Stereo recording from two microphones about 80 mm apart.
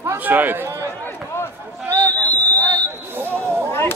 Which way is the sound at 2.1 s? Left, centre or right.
Left.